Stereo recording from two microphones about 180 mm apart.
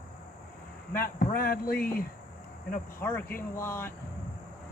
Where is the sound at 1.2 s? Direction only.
55° left (ahead or behind).